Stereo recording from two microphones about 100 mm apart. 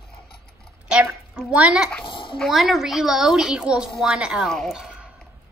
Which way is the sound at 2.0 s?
60° left (ahead or behind).